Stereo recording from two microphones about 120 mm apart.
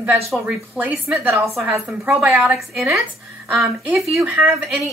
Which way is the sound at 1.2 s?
25° right (ahead or behind).